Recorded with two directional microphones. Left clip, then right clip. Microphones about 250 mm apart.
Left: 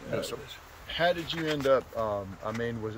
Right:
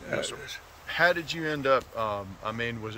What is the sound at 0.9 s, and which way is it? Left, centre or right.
Speech, centre.